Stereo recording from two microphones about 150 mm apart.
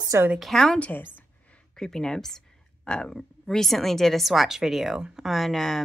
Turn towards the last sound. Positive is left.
turn(degrees=0)  # may be behind; listen again after turning